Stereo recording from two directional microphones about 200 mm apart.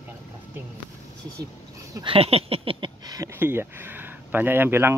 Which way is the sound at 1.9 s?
25° right (ahead or behind).